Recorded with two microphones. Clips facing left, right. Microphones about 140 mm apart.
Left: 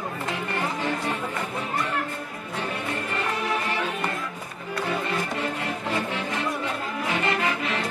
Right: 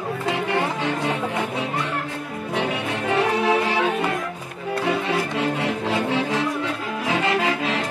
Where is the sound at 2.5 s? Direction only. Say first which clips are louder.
Right 5 dB; 85° right.